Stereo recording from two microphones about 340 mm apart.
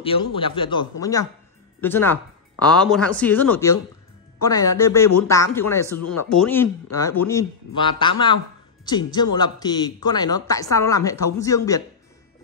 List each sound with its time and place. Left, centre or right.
0.0 s a man's voice: centre
5.9 s speech: left
6.3 s a man's voice: centre